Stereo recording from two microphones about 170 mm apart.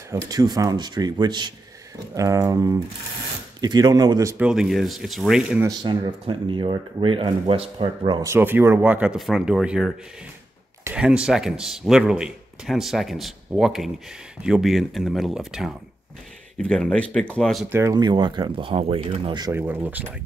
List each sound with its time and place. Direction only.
0.3 s speech: 20° right (ahead or behind)
4.5 s speech: centre (ahead or behind)
5.6 s speech: 25° right (ahead or behind)
8.3 s speech: 10° right (ahead or behind)
17.6 s speech: 15° right (ahead or behind)
19.5 s speech: 10° right (ahead or behind)